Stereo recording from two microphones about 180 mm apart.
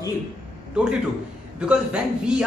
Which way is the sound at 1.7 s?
5° right (ahead or behind).